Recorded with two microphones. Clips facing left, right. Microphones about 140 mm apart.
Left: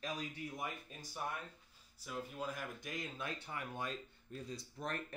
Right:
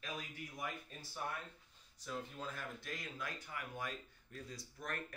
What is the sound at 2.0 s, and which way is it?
Speech, 10° left (ahead or behind).